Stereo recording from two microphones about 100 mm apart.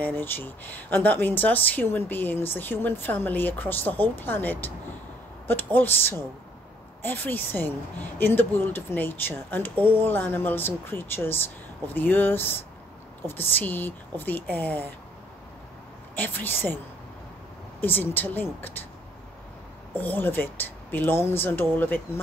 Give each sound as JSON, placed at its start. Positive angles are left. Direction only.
{"t": 0.0, "sound": "speech", "side_deg": 20}
{"t": 16.2, "sound": "speech", "side_deg": 20}
{"t": 19.9, "sound": "speech", "side_deg": 20}